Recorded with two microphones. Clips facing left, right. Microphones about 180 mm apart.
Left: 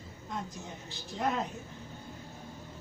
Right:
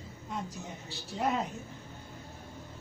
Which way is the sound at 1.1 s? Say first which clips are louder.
Right 1 dB; 5° right (ahead or behind).